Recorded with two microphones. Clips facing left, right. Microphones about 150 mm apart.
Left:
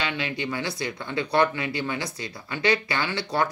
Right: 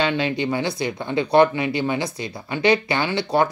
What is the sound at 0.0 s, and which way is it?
Speech, 30° right (ahead or behind).